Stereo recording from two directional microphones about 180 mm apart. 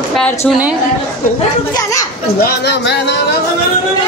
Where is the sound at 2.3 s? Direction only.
60° left (ahead or behind).